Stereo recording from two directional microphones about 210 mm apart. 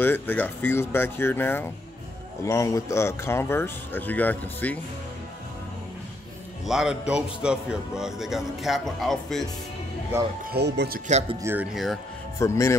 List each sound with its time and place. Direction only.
0.0 s speech: 10° left (ahead or behind)
6.6 s a man's voice: centre (ahead or behind)
10.1 s speech: 10° right (ahead or behind)
10.5 s speech: 50° right (ahead or behind)
11.1 s speech: 30° right (ahead or behind)
11.4 s a man's voice: 5° right (ahead or behind)
12.4 s speech: 15° left (ahead or behind)